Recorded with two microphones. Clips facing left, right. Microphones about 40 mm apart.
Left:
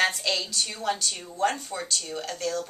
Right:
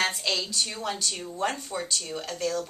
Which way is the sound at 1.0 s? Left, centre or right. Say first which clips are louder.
Left 3 dB; centre.